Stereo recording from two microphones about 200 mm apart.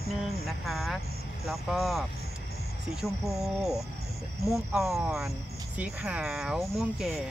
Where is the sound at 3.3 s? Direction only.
Centre (ahead or behind).